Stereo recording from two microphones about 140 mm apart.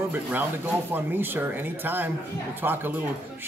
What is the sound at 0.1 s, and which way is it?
A man's voice, 15° right (ahead or behind).